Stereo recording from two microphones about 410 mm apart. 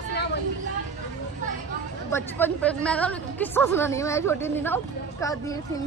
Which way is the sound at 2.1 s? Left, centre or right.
Centre.